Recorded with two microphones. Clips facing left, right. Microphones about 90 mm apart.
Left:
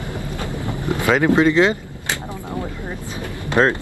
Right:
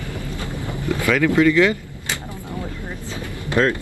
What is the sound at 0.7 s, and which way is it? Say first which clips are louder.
Speech: left 1 dB; 20° left (ahead or behind).